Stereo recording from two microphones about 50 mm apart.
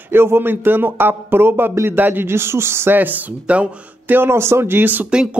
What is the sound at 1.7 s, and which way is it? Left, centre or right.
Speech, right.